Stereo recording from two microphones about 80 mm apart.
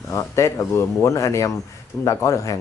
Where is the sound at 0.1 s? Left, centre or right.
Left.